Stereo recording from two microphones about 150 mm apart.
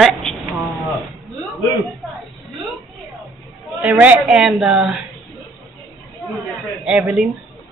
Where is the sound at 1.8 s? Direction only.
Centre (ahead or behind).